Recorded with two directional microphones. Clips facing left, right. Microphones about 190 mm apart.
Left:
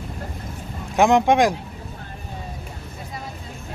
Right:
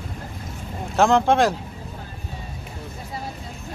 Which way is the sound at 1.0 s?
15° left (ahead or behind).